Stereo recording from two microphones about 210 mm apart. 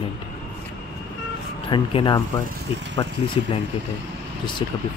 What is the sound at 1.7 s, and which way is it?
Speech, 20° left (ahead or behind).